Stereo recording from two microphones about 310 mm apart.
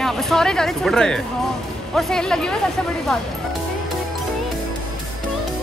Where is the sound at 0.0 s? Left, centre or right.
Centre.